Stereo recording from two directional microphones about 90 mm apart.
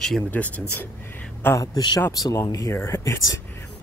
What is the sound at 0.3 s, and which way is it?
Speech, 15° left (ahead or behind).